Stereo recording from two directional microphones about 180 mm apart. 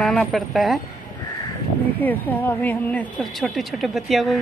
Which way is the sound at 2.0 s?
10° left (ahead or behind).